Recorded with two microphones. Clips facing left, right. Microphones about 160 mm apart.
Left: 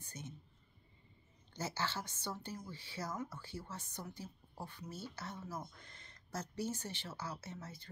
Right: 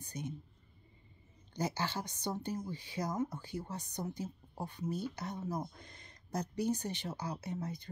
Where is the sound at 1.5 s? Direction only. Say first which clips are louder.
Right 4 dB; 15° right (ahead or behind).